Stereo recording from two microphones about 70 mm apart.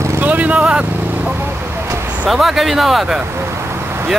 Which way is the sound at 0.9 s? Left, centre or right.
Right.